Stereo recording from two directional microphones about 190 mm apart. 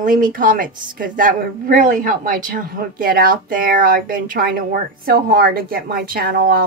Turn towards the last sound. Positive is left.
turn(degrees=-50)  # may be behind; listen again after turning